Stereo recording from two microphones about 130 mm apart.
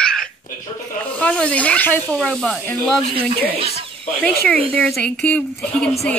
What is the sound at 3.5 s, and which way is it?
Speech, 50° right (ahead or behind).